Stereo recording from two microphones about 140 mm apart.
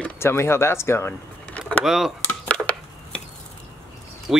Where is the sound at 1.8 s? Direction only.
5° right (ahead or behind).